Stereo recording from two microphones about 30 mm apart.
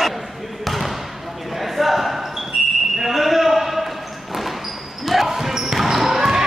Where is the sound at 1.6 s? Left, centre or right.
Centre.